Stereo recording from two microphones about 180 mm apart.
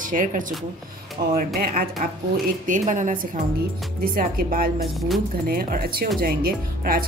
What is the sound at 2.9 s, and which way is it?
Speech, 45° right (ahead or behind).